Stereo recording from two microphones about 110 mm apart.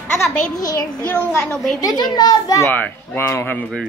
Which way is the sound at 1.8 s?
40° left (ahead or behind).